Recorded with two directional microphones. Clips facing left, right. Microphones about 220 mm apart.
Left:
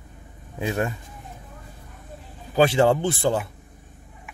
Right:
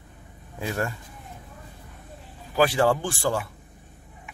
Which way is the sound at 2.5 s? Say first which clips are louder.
Left 3 dB; 25° left (ahead or behind).